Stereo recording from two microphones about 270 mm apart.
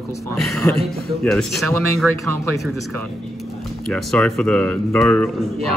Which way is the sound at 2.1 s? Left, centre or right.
Right.